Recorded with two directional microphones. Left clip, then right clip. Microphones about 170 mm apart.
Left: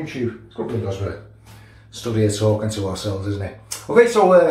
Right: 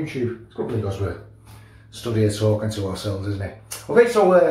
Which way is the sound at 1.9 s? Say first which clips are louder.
Left 2 dB; centre (ahead or behind).